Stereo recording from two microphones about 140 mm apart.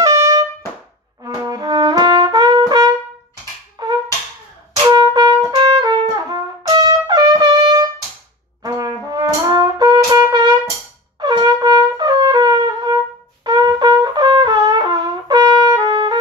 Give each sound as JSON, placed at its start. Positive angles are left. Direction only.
{"t": 0.0, "sound": "trumpet", "side_deg": -20}
{"t": 1.2, "sound": "brass instrument", "side_deg": -30}
{"t": 3.8, "sound": "music", "side_deg": -30}
{"t": 4.8, "sound": "trumpet", "side_deg": -30}
{"t": 8.6, "sound": "brass instrument", "side_deg": -25}
{"t": 11.1, "sound": "wind instrument", "side_deg": -30}